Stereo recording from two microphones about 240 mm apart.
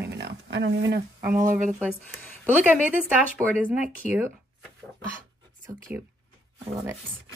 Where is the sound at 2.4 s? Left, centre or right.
Centre.